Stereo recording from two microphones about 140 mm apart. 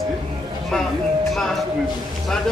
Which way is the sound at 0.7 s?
5° left (ahead or behind).